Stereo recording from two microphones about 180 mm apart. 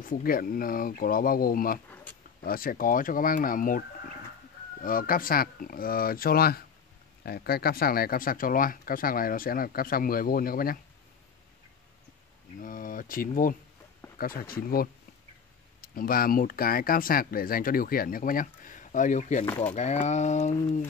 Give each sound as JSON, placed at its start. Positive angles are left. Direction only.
{"t": 0.0, "sound": "speech", "side_deg": 50}
{"t": 4.8, "sound": "speech", "side_deg": 50}
{"t": 12.5, "sound": "speech", "side_deg": 50}
{"t": 19.4, "sound": "speech", "side_deg": 10}
{"t": 19.7, "sound": "speech", "side_deg": 40}